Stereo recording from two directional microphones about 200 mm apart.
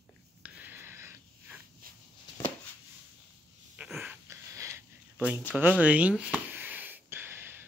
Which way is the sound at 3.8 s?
5° right (ahead or behind).